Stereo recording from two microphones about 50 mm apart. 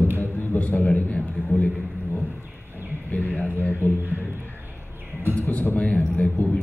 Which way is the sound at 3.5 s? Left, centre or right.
Left.